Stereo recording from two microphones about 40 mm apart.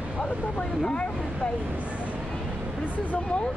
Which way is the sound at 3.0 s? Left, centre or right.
Left.